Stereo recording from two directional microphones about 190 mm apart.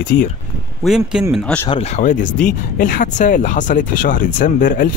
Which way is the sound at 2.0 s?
40° left (ahead or behind).